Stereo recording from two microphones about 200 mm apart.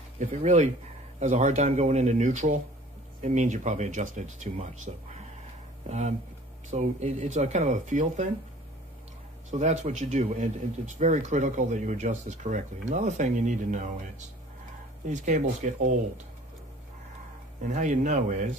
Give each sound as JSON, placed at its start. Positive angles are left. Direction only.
{"t": 0.2, "sound": "speech", "side_deg": -35}
{"t": 9.5, "sound": "speech", "side_deg": -35}
{"t": 15.0, "sound": "speech", "side_deg": -40}
{"t": 17.6, "sound": "speech", "side_deg": -40}